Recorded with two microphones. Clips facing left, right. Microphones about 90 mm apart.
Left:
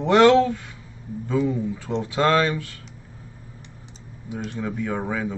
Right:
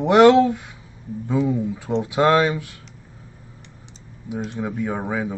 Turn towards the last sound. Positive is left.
turn(degrees=-15)  # may be behind; listen again after turning